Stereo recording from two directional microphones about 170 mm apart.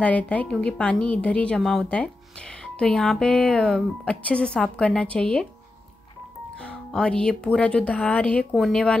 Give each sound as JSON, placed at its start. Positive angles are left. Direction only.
{"t": 0.0, "sound": "speech", "side_deg": 10}
{"t": 6.6, "sound": "speech", "side_deg": 5}